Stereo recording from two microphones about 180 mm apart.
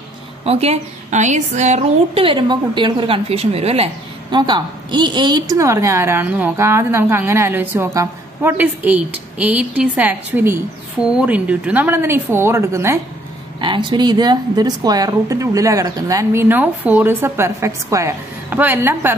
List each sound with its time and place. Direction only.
0.5 s a woman's voice: 35° right (ahead or behind); by 13.0 s 15° right (ahead or behind)
13.6 s a woman's voice: 25° right (ahead or behind)